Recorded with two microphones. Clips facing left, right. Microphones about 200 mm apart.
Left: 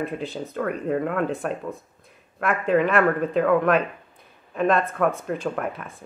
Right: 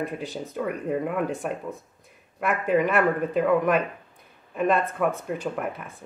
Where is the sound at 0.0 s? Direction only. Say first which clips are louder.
Left 2 dB; 15° right (ahead or behind).